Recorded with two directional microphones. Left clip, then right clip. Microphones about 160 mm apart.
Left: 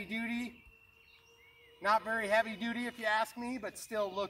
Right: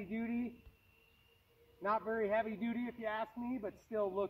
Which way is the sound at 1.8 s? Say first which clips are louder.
Left 5 dB; 90° left.